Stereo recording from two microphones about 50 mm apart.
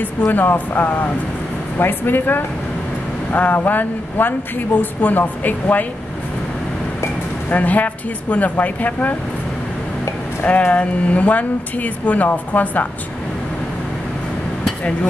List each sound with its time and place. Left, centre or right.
0.2 s speech: left
7.5 s speech: left
10.4 s speech: left